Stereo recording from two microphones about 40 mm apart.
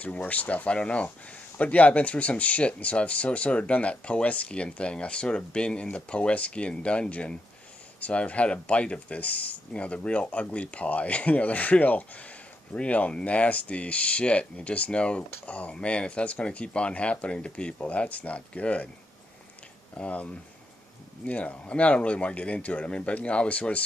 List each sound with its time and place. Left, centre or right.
0.0 s speech: left
17.7 s speech: left
20.0 s speech: left
21.6 s speech: left